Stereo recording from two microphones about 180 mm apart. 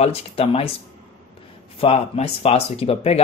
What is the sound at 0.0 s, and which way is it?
Speech, 30° left (ahead or behind).